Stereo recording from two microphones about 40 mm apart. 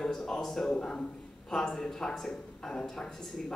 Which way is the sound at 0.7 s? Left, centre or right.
Left.